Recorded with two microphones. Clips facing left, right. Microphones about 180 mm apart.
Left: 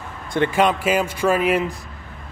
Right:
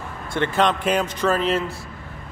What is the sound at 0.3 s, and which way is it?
A man's voice, 15° left (ahead or behind).